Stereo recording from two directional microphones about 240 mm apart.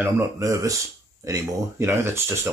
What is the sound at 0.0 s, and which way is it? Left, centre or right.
Speech, centre.